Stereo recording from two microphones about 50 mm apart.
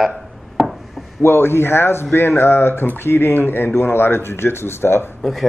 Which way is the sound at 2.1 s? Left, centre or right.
Left.